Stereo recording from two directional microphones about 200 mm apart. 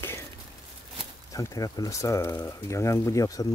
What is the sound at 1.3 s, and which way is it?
Speech, 15° left (ahead or behind).